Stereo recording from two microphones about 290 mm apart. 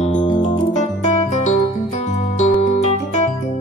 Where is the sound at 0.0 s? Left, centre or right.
Left.